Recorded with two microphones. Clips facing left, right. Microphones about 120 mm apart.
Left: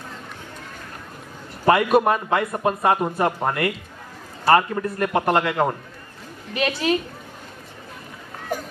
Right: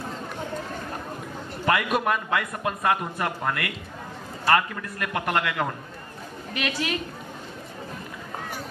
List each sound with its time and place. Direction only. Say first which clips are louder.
1.7 s a man's voice: left 7 dB; 35° left (ahead or behind)
8.5 s music: left 13 dB; 45° left (ahead or behind)